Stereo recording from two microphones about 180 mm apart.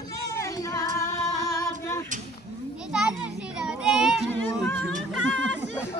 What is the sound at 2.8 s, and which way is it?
Child singing, 5° right (ahead or behind).